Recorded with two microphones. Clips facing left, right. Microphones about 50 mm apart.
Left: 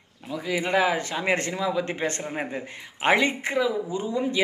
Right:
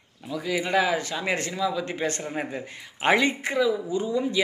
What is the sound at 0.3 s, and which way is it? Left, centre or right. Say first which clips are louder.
Speech: even; centre.